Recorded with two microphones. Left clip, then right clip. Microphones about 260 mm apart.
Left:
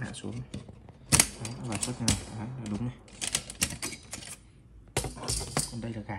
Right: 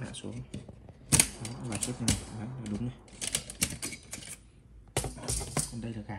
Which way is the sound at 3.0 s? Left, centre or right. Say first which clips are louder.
Left 2 dB; centre.